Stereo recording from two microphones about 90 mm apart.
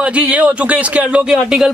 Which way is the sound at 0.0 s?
15° right (ahead or behind).